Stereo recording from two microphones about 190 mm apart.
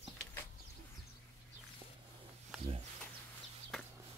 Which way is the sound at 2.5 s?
Centre (ahead or behind).